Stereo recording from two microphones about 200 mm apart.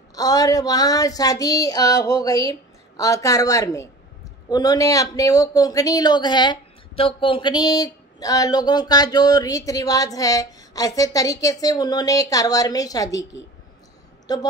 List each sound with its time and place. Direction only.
0.1 s a woman's voice: 20° left (ahead or behind)
14.2 s a woman's voice: 20° left (ahead or behind)